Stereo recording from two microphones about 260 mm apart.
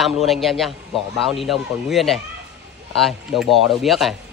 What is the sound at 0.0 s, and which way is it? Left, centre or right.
Speech, centre.